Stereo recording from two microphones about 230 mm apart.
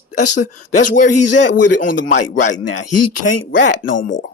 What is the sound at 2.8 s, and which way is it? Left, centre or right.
Speech, left.